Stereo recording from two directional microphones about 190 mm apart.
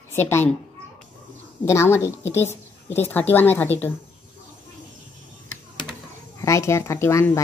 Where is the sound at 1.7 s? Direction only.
15° left (ahead or behind).